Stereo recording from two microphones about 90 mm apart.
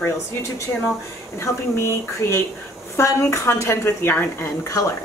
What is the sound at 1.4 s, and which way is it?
A woman's voice, 30° left (ahead or behind).